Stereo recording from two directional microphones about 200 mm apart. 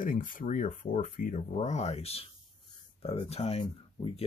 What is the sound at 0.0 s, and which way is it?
Speech, 45° left (ahead or behind).